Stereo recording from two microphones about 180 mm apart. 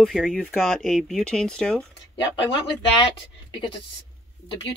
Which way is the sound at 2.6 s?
25° left (ahead or behind).